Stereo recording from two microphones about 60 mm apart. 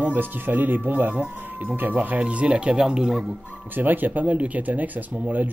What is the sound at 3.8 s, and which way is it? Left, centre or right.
Speech, right.